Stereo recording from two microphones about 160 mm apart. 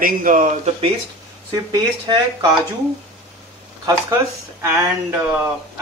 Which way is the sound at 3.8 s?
15° right (ahead or behind).